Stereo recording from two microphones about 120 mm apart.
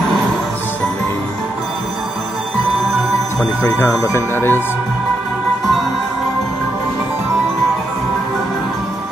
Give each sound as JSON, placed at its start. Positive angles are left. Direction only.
{"t": 4.0, "sound": "speech", "side_deg": 20}